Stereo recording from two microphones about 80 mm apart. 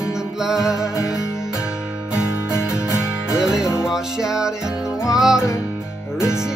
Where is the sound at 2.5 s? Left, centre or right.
Left.